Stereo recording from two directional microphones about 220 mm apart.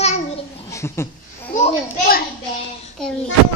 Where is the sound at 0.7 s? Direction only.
15° left (ahead or behind).